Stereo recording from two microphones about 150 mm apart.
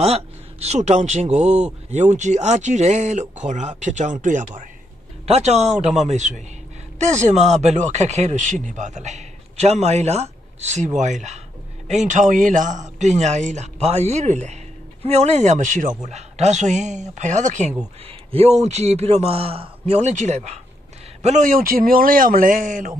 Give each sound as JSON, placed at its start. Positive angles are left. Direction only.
{"t": 0.0, "sound": "speech", "side_deg": -45}
{"t": 5.2, "sound": "speech", "side_deg": -45}